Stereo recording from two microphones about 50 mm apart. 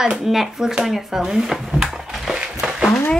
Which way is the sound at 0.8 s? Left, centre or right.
Centre.